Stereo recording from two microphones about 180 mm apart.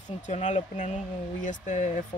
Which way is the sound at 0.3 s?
40° left (ahead or behind).